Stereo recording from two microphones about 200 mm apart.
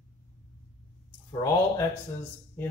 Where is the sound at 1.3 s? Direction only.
15° left (ahead or behind).